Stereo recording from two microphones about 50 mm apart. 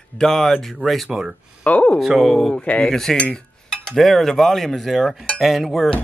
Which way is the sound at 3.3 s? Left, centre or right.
Centre.